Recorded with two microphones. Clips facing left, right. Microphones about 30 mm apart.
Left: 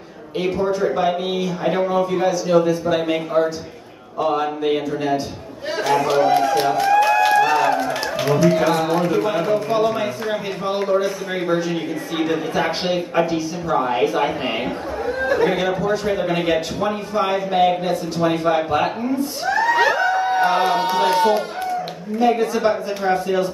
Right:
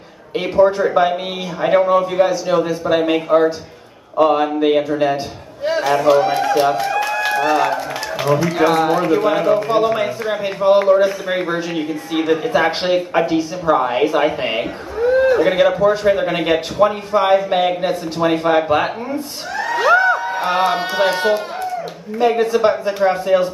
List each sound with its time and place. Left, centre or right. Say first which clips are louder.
0.4 s a man's voice: right 6 dB; right
5.7 s speech: right 5 dB; centre
6.8 s a sound: left 4 dB; centre
8.5 s a man's voice: right 3 dB; centre
11.4 s a man's voice: even; centre
19.4 s crowd: left 3 dB; centre
19.9 s a sound: right 6 dB; centre
20.3 s music: even; centre
20.9 s a man's voice: even; centre